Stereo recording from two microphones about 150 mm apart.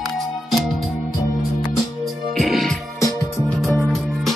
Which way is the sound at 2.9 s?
20° left (ahead or behind).